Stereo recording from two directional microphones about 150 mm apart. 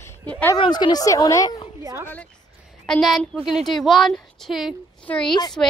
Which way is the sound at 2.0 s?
10° left (ahead or behind).